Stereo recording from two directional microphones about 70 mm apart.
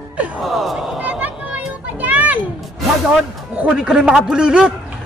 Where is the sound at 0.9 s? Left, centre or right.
Centre.